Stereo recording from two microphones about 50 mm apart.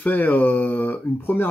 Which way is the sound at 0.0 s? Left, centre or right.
Left.